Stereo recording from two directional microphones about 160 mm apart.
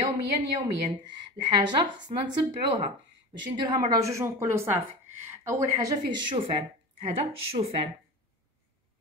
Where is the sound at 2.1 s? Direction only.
45° right (ahead or behind).